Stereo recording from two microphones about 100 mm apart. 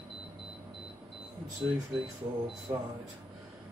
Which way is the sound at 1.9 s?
5° right (ahead or behind).